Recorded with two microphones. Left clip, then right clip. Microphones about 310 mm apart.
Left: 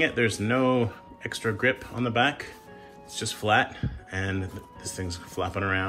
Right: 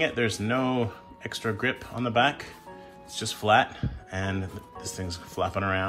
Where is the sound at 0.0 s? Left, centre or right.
Centre.